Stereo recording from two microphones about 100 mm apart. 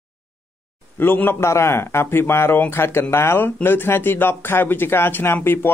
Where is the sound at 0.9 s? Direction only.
20° left (ahead or behind).